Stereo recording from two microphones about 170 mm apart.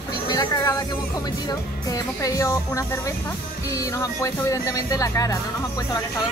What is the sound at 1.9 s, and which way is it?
Speech, 20° left (ahead or behind).